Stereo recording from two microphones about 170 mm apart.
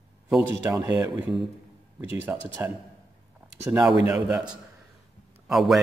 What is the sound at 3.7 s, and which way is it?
Speech, 5° right (ahead or behind).